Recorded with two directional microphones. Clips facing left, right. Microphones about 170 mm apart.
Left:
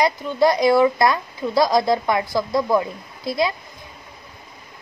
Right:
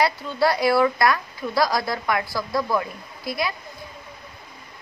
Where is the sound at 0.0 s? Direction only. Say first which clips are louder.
Left 3 dB; 20° left (ahead or behind).